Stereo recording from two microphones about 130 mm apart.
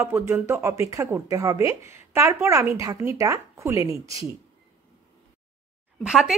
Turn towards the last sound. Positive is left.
turn(degrees=-5)  # may be behind; listen again after turning